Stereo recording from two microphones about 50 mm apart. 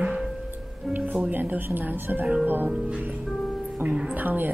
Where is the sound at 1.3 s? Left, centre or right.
Right.